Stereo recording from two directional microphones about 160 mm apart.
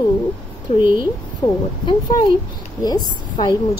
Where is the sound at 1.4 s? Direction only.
25° left (ahead or behind).